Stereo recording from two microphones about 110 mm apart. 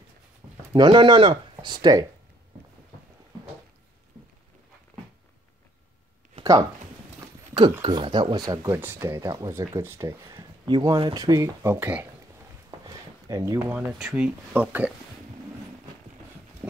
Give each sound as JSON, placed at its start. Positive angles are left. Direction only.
{"t": 0.4, "sound": "a sound", "side_deg": -20}
{"t": 0.7, "sound": "speech", "side_deg": -40}
{"t": 6.4, "sound": "a sound", "side_deg": -60}
{"t": 7.8, "sound": "speech", "side_deg": -50}
{"t": 8.7, "sound": "speech", "side_deg": -20}
{"t": 10.7, "sound": "speech", "side_deg": -35}
{"t": 12.8, "sound": "a sound", "side_deg": -30}
{"t": 13.6, "sound": "speech", "side_deg": -20}
{"t": 13.9, "sound": "speech", "side_deg": -5}